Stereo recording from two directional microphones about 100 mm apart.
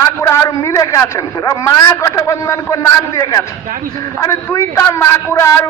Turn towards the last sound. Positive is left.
turn(degrees=25)  # may be behind; listen again after turning